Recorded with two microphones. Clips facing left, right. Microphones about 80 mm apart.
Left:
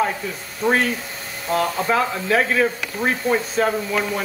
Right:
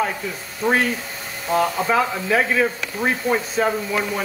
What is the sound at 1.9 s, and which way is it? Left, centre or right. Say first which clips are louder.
Speech: even; centre.